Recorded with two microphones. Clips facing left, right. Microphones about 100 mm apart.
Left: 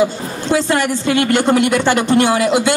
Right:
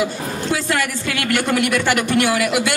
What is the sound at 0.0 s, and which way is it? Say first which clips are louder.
A woman's voice: left 5 dB; 30° left (ahead or behind).